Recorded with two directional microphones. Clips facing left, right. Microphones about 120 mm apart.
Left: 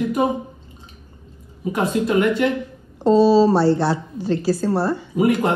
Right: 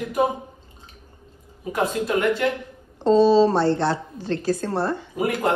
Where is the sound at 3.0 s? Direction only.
10° left (ahead or behind).